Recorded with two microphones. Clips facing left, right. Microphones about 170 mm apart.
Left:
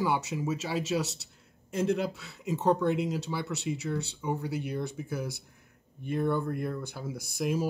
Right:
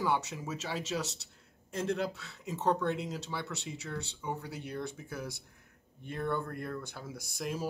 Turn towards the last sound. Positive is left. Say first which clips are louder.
# left 7 dB
turn(degrees=10)  # may be behind; listen again after turning